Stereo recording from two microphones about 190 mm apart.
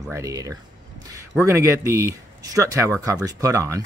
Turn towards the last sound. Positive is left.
turn(degrees=-15)  # may be behind; listen again after turning